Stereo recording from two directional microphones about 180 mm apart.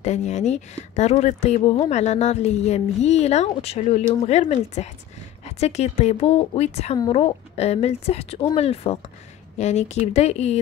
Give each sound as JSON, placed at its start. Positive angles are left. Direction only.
{"t": 0.0, "sound": "speech", "side_deg": 40}